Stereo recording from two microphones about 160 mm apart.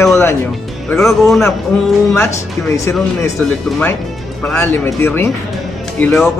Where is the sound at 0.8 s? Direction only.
5° left (ahead or behind).